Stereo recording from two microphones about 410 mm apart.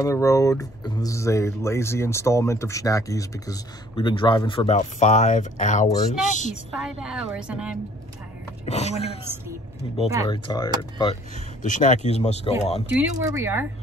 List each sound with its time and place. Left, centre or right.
0.0 s speech: centre
6.8 s a woman's voice: centre
8.6 s speech: centre
10.2 s speech: centre
12.9 s a woman's voice: centre